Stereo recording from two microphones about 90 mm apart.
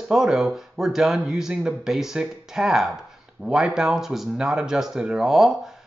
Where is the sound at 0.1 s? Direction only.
5° right (ahead or behind).